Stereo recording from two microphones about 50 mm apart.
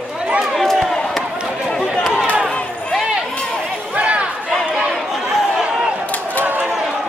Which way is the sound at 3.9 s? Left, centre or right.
Right.